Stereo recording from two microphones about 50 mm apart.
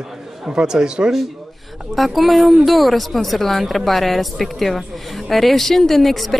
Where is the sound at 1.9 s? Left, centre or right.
Centre.